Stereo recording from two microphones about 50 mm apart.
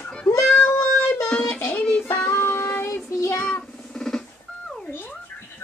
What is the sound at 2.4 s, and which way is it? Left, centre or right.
Child singing, left.